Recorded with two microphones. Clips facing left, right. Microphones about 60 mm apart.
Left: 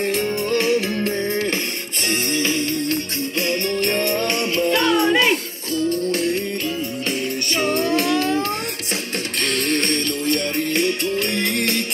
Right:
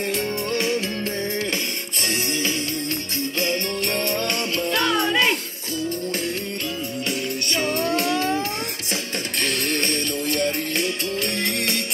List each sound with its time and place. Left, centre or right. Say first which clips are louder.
1.0 s music: left 4 dB; left
4.0 s music: left 3 dB; left
7.6 s music: left 4 dB; left